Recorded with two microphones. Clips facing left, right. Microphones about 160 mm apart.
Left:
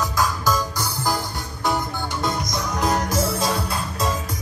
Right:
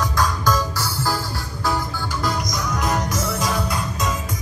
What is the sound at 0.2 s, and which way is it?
Music, 10° left (ahead or behind).